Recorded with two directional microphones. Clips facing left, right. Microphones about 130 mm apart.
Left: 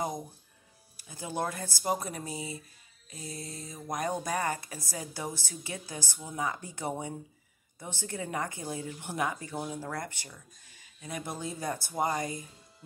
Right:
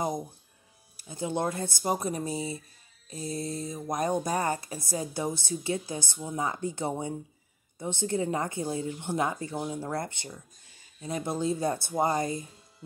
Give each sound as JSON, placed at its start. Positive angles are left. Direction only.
{"t": 0.9, "sound": "speech", "side_deg": -25}